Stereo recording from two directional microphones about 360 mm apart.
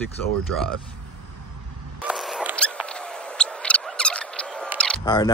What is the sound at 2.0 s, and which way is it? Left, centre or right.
Rodents, centre.